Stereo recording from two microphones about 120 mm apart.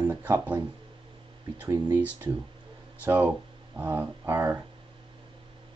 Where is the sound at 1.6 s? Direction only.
20° right (ahead or behind).